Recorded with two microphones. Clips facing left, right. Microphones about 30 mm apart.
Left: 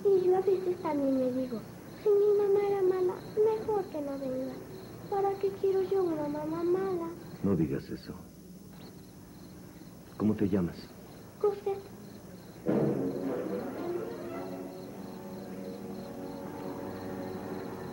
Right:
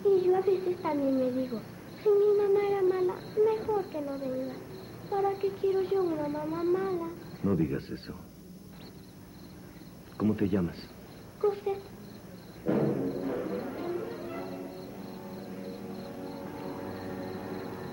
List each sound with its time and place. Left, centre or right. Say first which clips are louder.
0.0 s a woman's voice: right 1 dB; right
10.1 s a woman's voice: right 1 dB; right
12.6 s music: even; right